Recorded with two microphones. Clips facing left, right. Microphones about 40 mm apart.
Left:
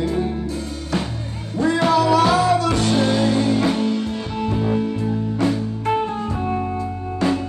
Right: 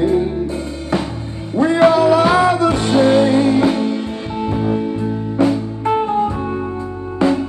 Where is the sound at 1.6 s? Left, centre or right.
Right; by 5.9 s centre.